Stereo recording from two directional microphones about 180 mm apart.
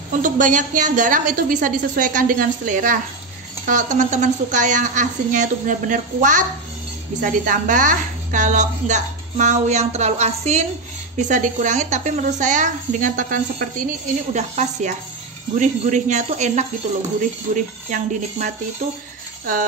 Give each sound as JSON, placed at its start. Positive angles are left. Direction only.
{"t": 0.2, "sound": "a woman's voice", "side_deg": -45}